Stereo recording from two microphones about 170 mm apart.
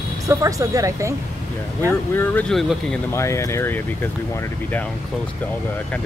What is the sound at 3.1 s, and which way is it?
Speech, 15° left (ahead or behind).